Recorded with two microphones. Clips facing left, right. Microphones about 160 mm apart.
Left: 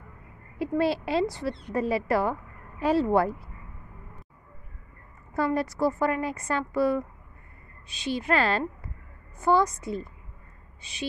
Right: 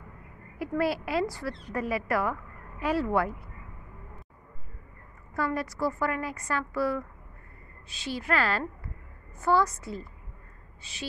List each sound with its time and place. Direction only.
0.6 s a woman's voice: 25° left (ahead or behind)
5.3 s a woman's voice: 25° left (ahead or behind)